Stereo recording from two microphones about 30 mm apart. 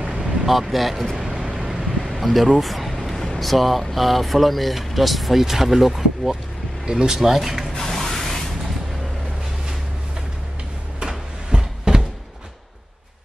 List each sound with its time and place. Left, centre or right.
0.2 s speech: centre
1.4 s vehicle: centre
2.0 s a sound: centre
3.3 s speech: centre
6.9 s speech: right
7.2 s speech: centre
7.9 s spray: centre
11.0 s a sound: right